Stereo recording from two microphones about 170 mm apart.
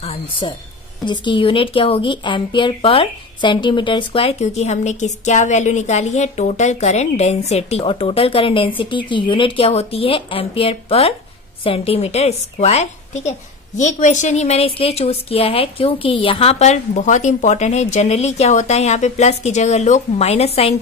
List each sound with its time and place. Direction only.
0.0 s a woman's voice: 35° left (ahead or behind)